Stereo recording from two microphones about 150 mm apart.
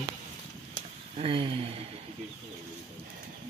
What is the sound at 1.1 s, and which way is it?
Speech, 35° right (ahead or behind).